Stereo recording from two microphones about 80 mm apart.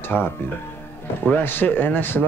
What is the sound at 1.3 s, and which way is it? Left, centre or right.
Speech, left.